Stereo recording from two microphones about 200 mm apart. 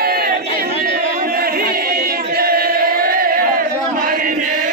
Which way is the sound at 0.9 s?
50° right (ahead or behind).